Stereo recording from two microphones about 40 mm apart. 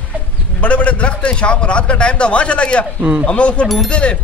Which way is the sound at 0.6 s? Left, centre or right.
Left.